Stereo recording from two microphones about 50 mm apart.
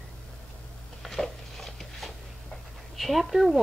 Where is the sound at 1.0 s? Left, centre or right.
Centre.